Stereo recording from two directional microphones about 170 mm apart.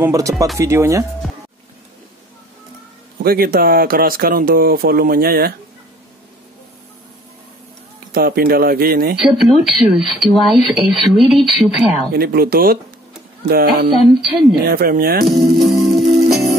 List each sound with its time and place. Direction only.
0.0 s speech: 20° right (ahead or behind)
3.3 s speech: 60° right (ahead or behind)
8.1 s speech: 65° right (ahead or behind)
9.2 s speech: centre (ahead or behind)
12.1 s speech: 65° right (ahead or behind)
15.6 s music: centre (ahead or behind)